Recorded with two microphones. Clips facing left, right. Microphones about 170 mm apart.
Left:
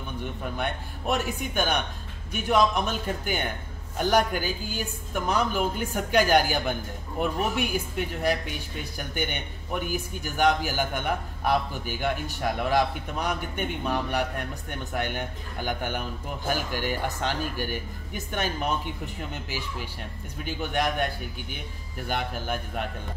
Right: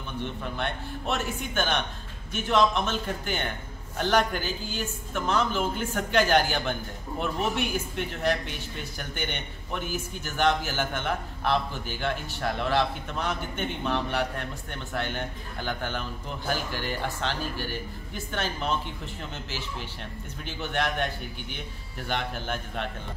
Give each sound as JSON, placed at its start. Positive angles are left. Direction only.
{"t": 0.6, "sound": "a woman's voice", "side_deg": 10}